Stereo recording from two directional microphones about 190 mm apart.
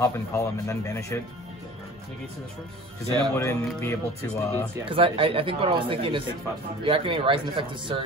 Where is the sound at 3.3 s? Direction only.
15° left (ahead or behind).